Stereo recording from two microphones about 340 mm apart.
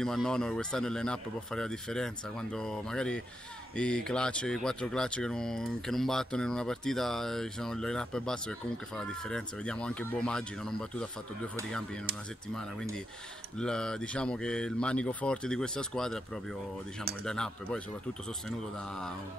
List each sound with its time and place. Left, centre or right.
0.0 s speech: centre
13.6 s speech: centre
17.2 s speech: centre